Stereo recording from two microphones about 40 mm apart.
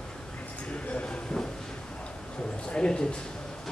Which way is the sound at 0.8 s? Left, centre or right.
Left.